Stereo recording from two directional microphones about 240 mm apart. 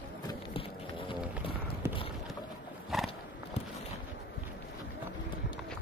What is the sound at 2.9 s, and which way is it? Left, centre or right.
Horse, centre.